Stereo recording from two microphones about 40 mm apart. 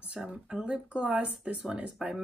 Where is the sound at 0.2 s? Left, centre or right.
Centre.